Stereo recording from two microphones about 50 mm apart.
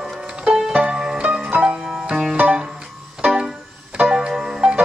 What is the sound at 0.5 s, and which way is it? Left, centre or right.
Music, right.